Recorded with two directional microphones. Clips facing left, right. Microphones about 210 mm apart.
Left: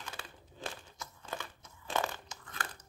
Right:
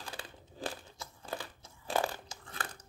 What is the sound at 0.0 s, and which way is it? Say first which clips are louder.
Crumpling: right 2 dB; 35° right (ahead or behind).